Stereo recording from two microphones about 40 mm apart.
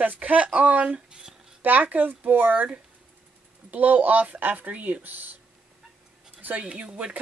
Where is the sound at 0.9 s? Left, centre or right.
Centre.